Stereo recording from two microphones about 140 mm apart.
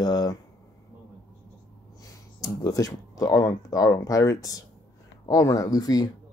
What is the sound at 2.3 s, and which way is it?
Speech, 25° left (ahead or behind).